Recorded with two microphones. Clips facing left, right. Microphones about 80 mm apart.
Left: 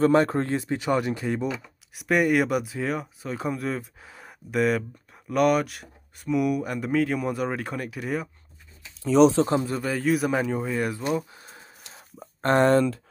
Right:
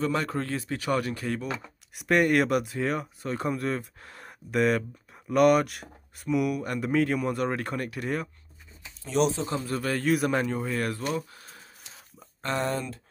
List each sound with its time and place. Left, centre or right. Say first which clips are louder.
0.0 s speech: left 8 dB; left
2.0 s speech: left 1 dB; centre
9.4 s a man's voice: left 10 dB; left
9.8 s speech: left 1 dB; centre
11.1 s speech: left 4 dB; centre
12.2 s speech: left 9 dB; left